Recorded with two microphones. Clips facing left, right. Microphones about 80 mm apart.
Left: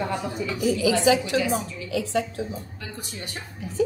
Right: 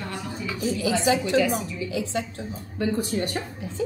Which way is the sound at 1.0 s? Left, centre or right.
Right.